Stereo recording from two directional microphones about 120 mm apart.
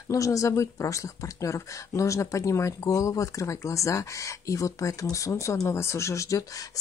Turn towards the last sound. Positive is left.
turn(degrees=25)  # may be behind; listen again after turning